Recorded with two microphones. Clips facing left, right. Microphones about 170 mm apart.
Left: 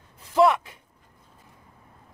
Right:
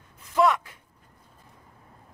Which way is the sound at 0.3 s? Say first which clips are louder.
Left 3 dB; 25° left (ahead or behind).